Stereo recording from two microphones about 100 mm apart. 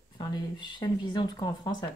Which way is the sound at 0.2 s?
50° left (ahead or behind).